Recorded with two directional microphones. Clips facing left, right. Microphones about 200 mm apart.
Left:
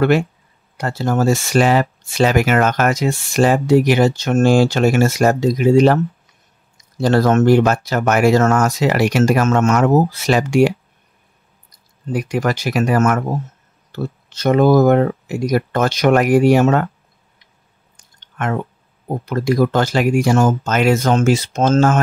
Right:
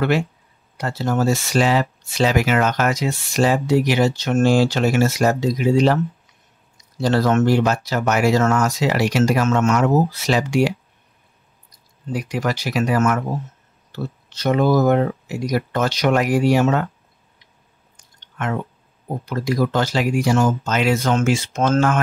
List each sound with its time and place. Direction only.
0.7 s speech: 50° left (ahead or behind)
7.0 s speech: 50° left (ahead or behind)
12.1 s speech: 50° left (ahead or behind)
17.9 s chewing: 50° left (ahead or behind)
19.2 s speech: 50° left (ahead or behind); by 22.0 s 30° left (ahead or behind)